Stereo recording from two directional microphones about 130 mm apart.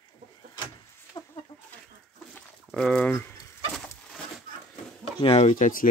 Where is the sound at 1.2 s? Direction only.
30° left (ahead or behind).